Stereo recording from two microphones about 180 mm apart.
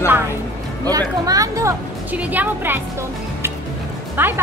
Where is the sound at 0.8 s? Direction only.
20° right (ahead or behind).